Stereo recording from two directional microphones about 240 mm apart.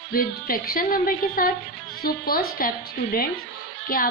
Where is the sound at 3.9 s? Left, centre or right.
Left.